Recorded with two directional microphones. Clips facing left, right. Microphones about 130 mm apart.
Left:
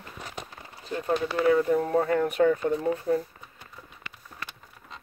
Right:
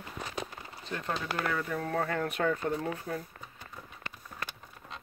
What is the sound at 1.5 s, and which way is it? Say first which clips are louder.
Speech: left 14 dB; 25° left (ahead or behind).